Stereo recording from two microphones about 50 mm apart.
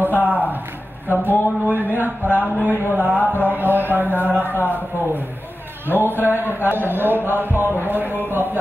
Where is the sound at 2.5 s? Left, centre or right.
Left.